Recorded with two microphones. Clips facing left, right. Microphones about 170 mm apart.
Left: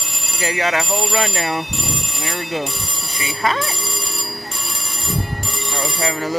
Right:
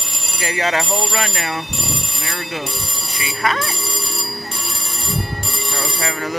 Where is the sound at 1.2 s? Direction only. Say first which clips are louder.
Left 3 dB; 30° left (ahead or behind).